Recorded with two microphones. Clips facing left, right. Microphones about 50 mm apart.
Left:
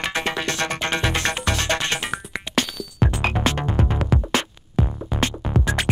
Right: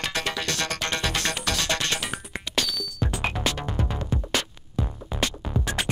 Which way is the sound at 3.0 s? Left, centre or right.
Left.